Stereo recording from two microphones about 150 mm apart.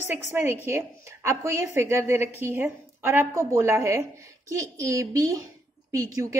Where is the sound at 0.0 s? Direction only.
15° right (ahead or behind).